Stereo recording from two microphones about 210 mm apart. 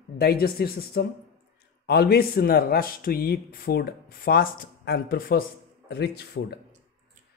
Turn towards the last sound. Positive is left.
turn(degrees=50)  # may be behind; listen again after turning